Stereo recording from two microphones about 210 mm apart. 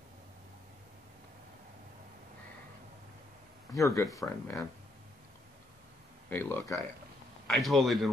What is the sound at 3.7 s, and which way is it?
Speech, 15° left (ahead or behind).